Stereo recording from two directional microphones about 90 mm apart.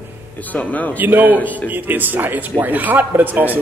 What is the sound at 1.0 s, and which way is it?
Speech, 20° right (ahead or behind).